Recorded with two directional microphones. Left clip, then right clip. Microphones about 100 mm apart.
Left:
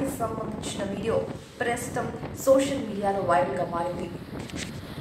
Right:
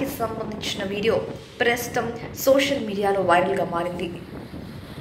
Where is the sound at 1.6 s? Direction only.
25° right (ahead or behind).